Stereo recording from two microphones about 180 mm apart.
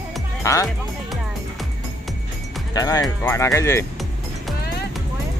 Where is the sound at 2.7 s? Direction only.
20° left (ahead or behind).